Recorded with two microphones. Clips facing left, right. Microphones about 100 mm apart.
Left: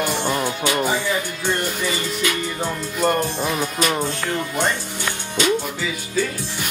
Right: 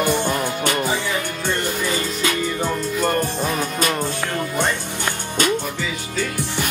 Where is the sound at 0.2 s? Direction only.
15° left (ahead or behind).